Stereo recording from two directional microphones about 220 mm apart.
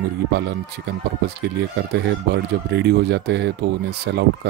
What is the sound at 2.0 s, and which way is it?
Speech, 50° right (ahead or behind).